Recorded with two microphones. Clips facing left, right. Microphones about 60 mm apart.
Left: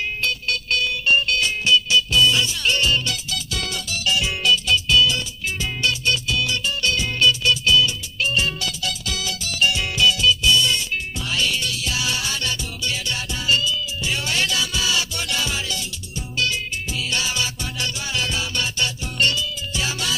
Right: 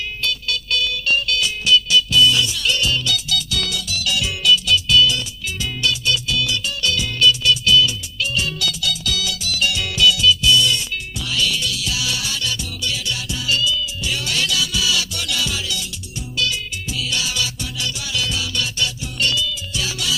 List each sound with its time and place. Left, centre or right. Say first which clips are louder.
0.2 s music: even; left
17.0 s music: right 1 dB; left